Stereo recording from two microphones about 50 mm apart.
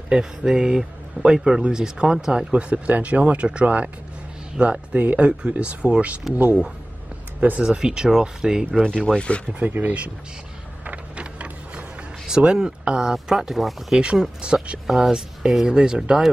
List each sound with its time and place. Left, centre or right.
0.1 s speech: centre
2.5 s speech: right
7.6 s speech: centre
8.8 s speech: centre
9.6 s speech: right
11.1 s vehicle: right
12.3 s speech: centre